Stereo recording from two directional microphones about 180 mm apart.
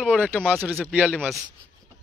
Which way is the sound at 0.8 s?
5° right (ahead or behind).